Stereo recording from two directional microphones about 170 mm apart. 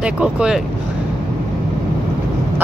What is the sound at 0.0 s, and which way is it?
Speech, 5° right (ahead or behind).